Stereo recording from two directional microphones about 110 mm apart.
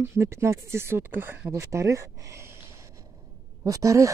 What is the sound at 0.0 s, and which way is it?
Speech, 25° right (ahead or behind).